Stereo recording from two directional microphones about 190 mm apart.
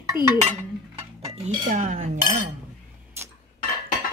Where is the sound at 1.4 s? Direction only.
40° right (ahead or behind).